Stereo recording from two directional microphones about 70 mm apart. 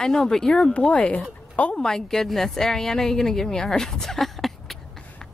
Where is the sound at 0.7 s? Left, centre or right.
Centre.